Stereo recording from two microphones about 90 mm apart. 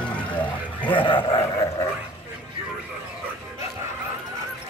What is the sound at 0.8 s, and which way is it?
Speech, 70° left (ahead or behind).